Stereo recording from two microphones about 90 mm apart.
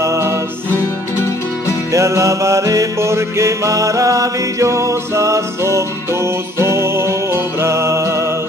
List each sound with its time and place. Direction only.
0.0 s music: 35° right (ahead or behind)
1.9 s music: 35° right (ahead or behind)